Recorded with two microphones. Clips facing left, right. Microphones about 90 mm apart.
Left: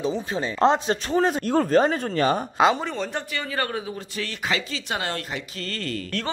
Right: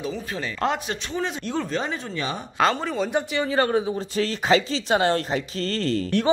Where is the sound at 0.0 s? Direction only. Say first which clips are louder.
Left 4 dB; 25° left (ahead or behind).